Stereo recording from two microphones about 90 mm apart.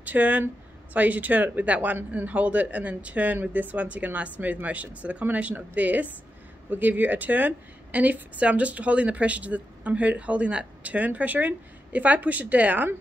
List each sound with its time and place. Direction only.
0.0 s a woman's voice: 15° right (ahead or behind)